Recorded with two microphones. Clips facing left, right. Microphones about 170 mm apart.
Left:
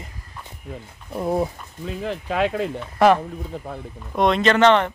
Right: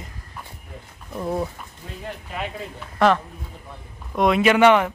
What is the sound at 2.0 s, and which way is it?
Speech, 90° left.